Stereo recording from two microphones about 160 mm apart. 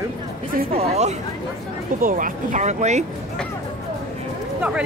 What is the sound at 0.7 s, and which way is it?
Speech, 40° right (ahead or behind).